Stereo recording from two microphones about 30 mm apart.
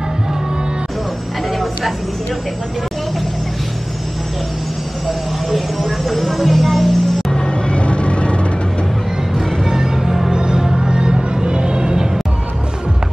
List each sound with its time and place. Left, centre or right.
5.0 s music: centre
7.4 s vehicle: left
9.7 s music: centre
10.3 s music: right